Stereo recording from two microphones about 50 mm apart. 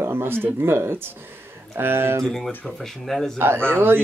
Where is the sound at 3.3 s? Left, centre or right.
Right.